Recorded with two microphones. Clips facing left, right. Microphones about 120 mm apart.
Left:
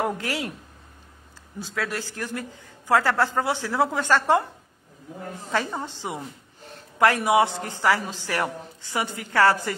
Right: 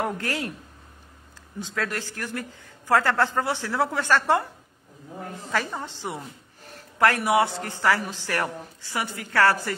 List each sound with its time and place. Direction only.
0.0 s speech: 15° left (ahead or behind)
1.7 s a man's voice: 10° left (ahead or behind)
5.5 s a man's voice: 20° left (ahead or behind)